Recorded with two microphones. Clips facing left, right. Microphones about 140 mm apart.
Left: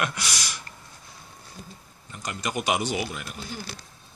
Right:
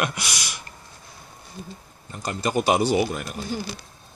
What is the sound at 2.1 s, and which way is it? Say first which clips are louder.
Speech: right 6 dB; 35° right (ahead or behind).